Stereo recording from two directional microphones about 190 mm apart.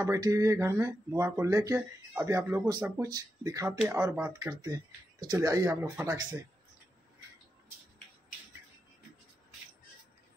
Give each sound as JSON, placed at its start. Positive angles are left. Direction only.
{"t": 0.0, "sound": "speech", "side_deg": -15}